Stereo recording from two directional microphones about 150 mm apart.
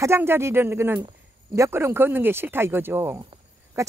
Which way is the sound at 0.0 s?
15° right (ahead or behind).